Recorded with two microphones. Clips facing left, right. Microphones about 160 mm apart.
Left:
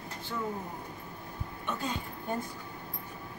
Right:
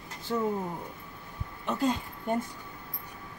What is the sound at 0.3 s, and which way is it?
Speech, 40° right (ahead or behind).